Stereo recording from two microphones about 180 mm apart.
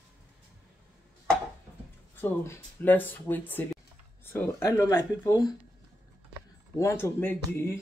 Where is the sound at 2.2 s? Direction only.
15° left (ahead or behind).